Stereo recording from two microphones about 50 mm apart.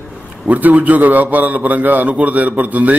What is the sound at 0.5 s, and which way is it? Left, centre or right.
A man's voice, right.